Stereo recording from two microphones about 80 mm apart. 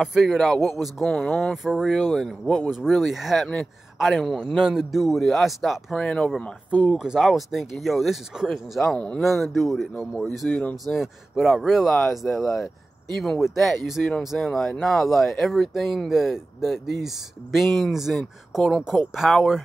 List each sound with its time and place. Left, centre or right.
0.0 s speech: centre
6.8 s speech: centre
9.2 s speech: centre
10.5 s speech: centre
10.9 s speech: centre